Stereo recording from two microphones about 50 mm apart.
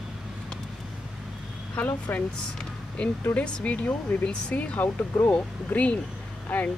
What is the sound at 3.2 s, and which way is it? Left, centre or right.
Speech, left.